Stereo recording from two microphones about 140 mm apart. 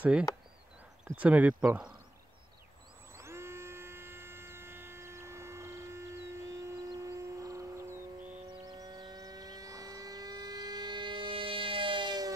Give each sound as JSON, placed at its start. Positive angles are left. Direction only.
{"t": 1.1, "sound": "speech", "side_deg": -10}
{"t": 3.2, "sound": "hum", "side_deg": -20}
{"t": 8.7, "sound": "vehicle", "side_deg": -30}